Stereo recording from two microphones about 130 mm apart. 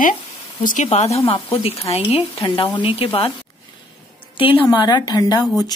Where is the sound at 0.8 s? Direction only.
55° left (ahead or behind).